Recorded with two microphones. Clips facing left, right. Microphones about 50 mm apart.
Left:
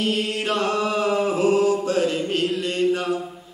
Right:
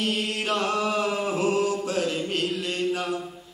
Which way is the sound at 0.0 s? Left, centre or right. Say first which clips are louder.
Left 4 dB; centre.